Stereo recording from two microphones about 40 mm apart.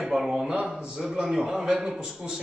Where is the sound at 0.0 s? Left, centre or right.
Centre.